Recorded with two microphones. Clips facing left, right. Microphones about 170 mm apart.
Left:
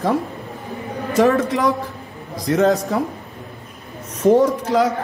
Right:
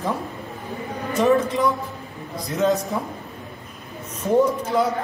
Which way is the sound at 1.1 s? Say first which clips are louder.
Left 3 dB; 90° left.